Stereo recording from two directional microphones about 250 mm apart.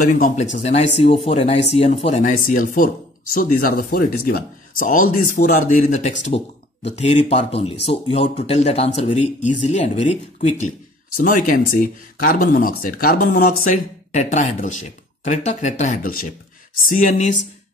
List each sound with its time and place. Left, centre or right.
0.0 s speech: left